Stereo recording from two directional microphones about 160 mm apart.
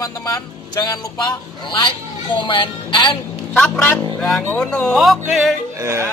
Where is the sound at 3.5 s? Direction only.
10° left (ahead or behind).